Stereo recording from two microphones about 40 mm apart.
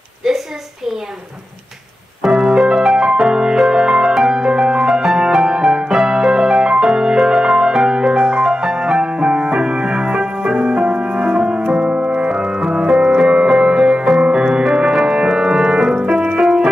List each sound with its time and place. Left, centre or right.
0.2 s a sound: centre
2.2 s music: centre; by 12.3 s right
12.3 s music: centre